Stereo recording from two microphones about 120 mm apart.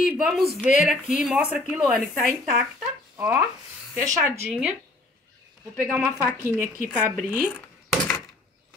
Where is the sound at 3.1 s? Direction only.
25° right (ahead or behind).